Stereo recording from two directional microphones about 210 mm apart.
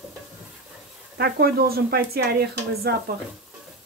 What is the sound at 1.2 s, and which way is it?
Speech, 45° right (ahead or behind).